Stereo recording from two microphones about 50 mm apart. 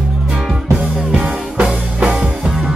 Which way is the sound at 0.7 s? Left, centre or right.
Right.